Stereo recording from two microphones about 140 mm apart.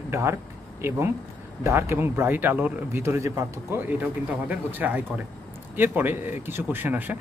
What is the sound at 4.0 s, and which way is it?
Speech, 10° right (ahead or behind).